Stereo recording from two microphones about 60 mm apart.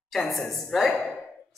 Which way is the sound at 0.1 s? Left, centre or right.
Centre.